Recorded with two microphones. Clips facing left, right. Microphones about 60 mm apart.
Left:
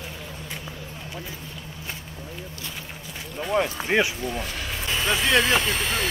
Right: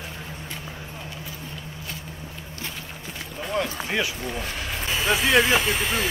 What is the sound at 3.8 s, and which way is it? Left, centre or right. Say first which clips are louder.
Speech: left 4 dB; left.